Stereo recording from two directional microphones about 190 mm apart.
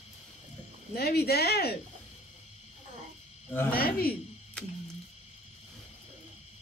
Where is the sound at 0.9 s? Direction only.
55° left (ahead or behind).